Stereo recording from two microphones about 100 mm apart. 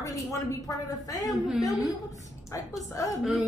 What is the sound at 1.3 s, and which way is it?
Speech, centre (ahead or behind).